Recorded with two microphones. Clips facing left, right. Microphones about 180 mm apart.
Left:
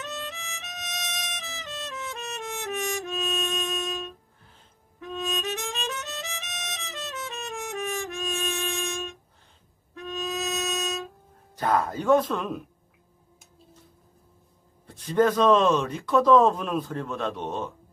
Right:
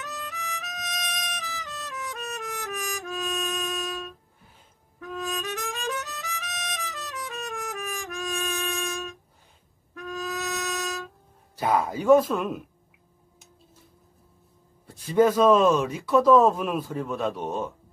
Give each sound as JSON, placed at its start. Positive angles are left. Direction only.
{"t": 0.0, "sound": "music", "side_deg": 25}
{"t": 11.5, "sound": "speech", "side_deg": -10}
{"t": 14.9, "sound": "speech", "side_deg": -10}